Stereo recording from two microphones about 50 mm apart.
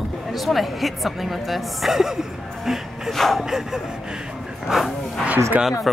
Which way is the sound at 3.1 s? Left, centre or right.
Centre.